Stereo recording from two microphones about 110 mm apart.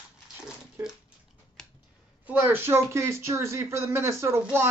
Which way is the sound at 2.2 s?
20° right (ahead or behind).